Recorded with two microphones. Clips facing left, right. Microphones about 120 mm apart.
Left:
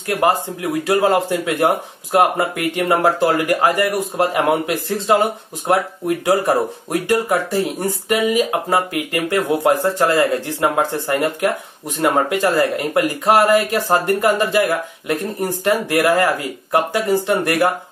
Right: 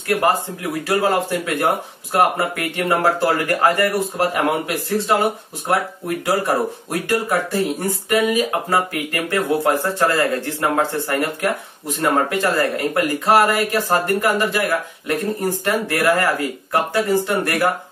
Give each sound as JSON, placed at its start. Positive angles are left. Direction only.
{"t": 0.1, "sound": "speech", "side_deg": 20}